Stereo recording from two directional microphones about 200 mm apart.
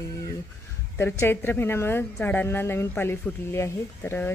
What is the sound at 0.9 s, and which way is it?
Speech, 10° left (ahead or behind).